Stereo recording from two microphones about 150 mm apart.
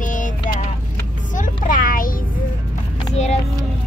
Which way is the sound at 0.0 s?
60° left (ahead or behind).